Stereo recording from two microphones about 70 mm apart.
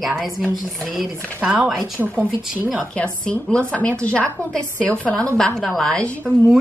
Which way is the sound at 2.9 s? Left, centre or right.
Centre.